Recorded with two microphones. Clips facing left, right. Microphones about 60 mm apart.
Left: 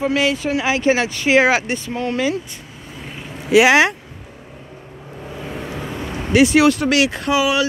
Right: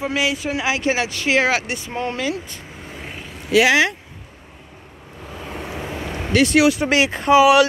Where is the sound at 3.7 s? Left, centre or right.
Left.